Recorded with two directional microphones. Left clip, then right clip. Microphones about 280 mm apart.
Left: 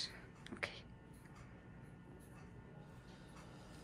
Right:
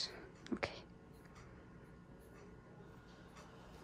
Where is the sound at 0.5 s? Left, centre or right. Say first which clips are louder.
Right 3 dB; centre.